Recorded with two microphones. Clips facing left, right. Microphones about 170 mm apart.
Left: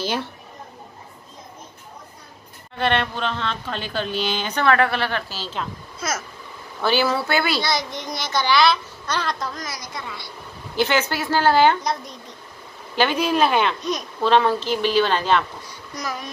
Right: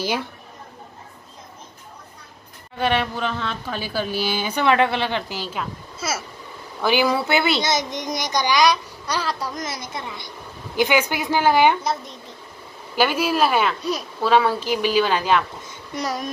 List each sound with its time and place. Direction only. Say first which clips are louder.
2.8 s speech: even; 10° right (ahead or behind)
9.5 s a woman's voice: right 3 dB; 25° right (ahead or behind)
11.8 s a child's voice: even; centre (ahead or behind)
15.6 s a child's voice: right 3 dB; 25° right (ahead or behind)